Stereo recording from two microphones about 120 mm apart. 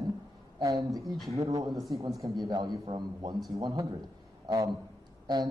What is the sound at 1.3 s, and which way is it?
Speech, 30° right (ahead or behind).